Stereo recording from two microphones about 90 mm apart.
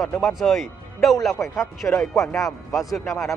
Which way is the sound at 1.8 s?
25° left (ahead or behind).